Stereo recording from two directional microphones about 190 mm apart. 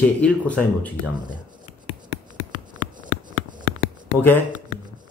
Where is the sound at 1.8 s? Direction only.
35° left (ahead or behind).